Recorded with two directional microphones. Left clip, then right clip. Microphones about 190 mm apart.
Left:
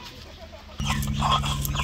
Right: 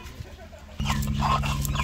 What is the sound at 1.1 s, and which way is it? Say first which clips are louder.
Dog: left 2 dB; 15° right (ahead or behind).